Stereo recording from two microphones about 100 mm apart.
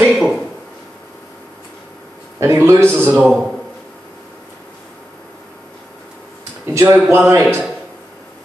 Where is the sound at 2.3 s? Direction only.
30° right (ahead or behind).